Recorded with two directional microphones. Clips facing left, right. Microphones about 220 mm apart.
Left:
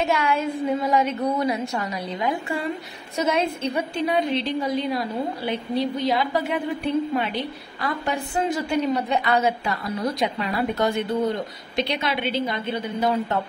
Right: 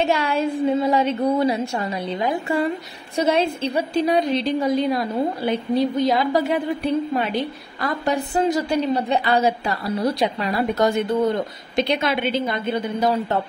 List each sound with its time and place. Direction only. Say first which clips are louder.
0.0 s a woman's voice: right 2 dB; 30° right (ahead or behind)
3.2 s a woman's voice: right 3 dB; 30° right (ahead or behind); by 12.5 s 45° right (ahead or behind)
13.0 s a woman's voice: right 1 dB; 35° right (ahead or behind)